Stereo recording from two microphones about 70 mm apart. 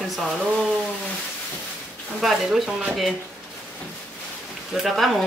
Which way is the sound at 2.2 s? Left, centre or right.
Centre.